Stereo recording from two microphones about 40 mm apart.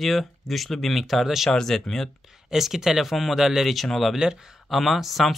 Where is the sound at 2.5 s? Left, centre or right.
Centre.